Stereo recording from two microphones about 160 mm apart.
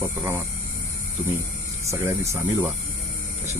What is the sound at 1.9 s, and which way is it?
Speech, 15° right (ahead or behind).